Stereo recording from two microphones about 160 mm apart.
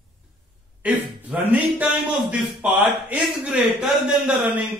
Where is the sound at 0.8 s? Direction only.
10° right (ahead or behind).